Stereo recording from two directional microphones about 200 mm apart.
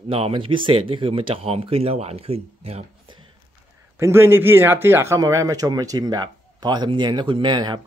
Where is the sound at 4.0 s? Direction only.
10° right (ahead or behind).